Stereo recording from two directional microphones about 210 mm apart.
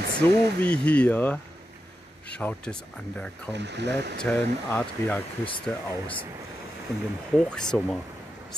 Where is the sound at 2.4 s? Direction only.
5° left (ahead or behind).